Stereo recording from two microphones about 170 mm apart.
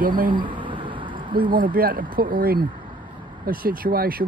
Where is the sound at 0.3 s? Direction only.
30° right (ahead or behind).